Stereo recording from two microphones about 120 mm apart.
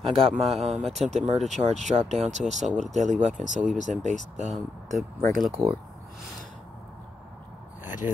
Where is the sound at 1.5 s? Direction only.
80° right.